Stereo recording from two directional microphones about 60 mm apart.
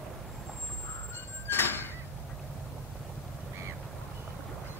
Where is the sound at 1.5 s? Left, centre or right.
Left.